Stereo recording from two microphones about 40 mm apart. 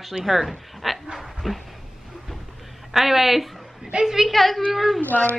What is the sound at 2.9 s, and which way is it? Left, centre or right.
A woman's voice, centre.